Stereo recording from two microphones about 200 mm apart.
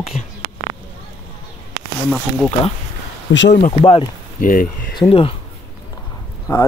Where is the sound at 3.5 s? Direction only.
35° left (ahead or behind).